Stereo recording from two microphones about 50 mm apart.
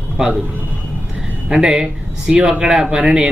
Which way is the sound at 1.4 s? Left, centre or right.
Centre.